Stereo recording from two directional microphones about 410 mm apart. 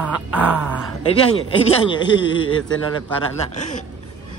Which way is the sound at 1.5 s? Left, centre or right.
Centre.